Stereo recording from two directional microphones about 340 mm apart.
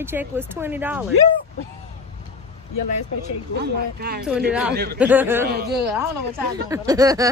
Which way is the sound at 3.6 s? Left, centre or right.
Right.